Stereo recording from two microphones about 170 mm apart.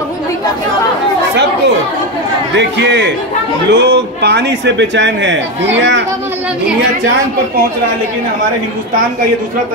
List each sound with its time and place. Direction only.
2.5 s a man's voice: 90° right